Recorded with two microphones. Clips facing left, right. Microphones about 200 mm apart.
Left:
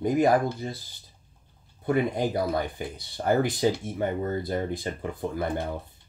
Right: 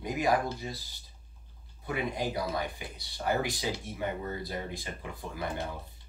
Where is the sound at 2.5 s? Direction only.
50° left (ahead or behind).